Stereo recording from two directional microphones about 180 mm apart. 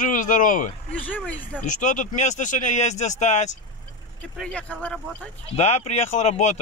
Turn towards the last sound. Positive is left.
turn(degrees=40)  # may be behind; listen again after turning